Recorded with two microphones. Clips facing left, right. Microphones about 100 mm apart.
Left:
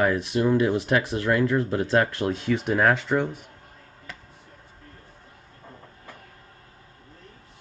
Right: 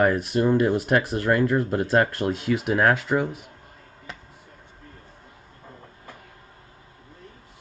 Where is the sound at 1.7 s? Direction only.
10° right (ahead or behind).